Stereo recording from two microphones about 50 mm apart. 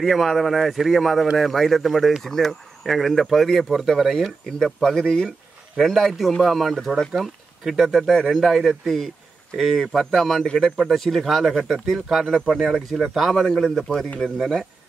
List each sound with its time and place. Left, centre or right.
0.0 s speech: centre